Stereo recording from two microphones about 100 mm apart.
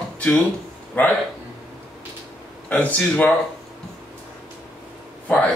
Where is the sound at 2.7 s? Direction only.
15° left (ahead or behind).